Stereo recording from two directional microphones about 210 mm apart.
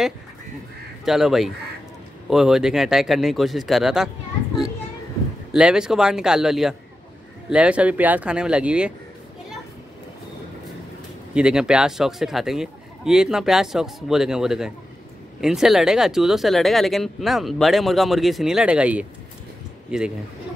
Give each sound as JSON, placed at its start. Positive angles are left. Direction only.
{"t": 1.0, "sound": "speech", "side_deg": 0}
{"t": 5.5, "sound": "speech", "side_deg": -5}
{"t": 11.3, "sound": "speech", "side_deg": -5}